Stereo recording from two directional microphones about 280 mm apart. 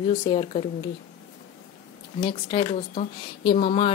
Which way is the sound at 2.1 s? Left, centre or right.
Centre.